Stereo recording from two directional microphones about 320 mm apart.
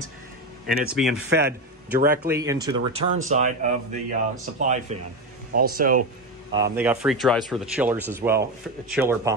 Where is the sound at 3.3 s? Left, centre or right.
Right.